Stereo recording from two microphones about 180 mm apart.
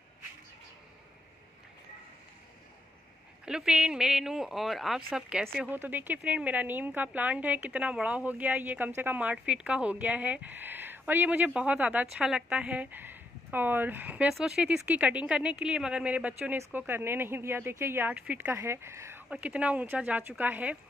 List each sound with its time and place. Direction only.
3.4 s speech: 5° right (ahead or behind)